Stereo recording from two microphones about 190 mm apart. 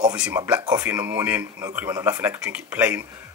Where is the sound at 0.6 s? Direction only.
15° right (ahead or behind).